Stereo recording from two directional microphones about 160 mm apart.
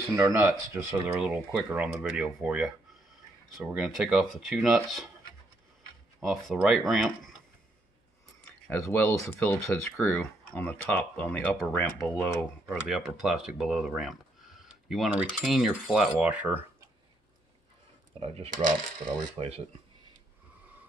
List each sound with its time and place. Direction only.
0.1 s speech: 15° right (ahead or behind); by 5.1 s centre (ahead or behind)
6.2 s speech: centre (ahead or behind)
8.7 s speech: 15° left (ahead or behind); by 16.9 s 10° right (ahead or behind)
18.2 s speech: 40° right (ahead or behind)